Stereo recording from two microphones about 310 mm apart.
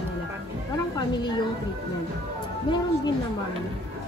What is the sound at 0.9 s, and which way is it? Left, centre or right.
Speech, centre.